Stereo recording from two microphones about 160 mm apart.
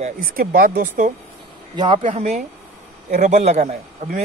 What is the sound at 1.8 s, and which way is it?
Speech, 30° right (ahead or behind).